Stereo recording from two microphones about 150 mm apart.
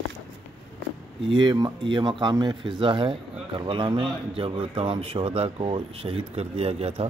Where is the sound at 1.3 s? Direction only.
30° right (ahead or behind).